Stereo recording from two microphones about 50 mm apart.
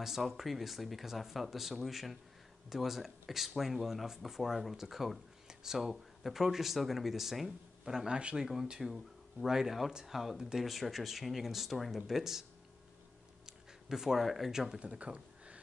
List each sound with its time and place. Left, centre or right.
0.0 s speech: centre
13.5 s speech: centre
14.8 s speech: right